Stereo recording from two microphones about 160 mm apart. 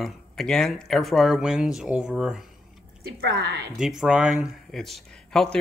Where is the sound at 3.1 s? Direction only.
75° right (ahead or behind).